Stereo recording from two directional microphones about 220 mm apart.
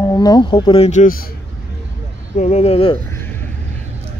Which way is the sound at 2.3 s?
30° left (ahead or behind).